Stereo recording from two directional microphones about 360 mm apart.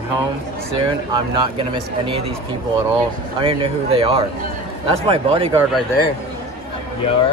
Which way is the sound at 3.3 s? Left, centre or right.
Centre.